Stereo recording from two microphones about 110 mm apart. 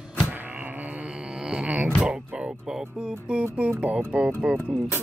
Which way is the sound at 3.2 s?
10° right (ahead or behind).